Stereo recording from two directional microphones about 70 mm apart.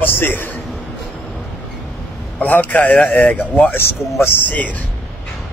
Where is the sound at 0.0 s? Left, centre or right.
Left.